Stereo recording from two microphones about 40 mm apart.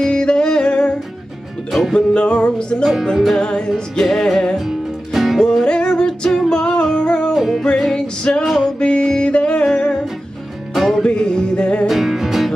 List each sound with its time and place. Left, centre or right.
0.0 s music: left
1.7 s music: centre
2.0 s music: left
2.8 s music: centre
3.3 s music: left
4.0 s music: centre
4.6 s music: centre
5.4 s music: centre
5.7 s music: left
7.3 s music: centre
7.9 s music: left
10.7 s music: centre
11.1 s music: left
11.9 s music: centre